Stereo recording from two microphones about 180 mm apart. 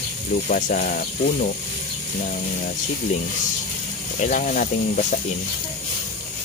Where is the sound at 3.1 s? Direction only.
40° left (ahead or behind).